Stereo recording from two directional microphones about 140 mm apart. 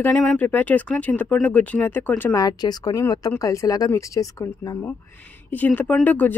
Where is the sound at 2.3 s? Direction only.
30° left (ahead or behind).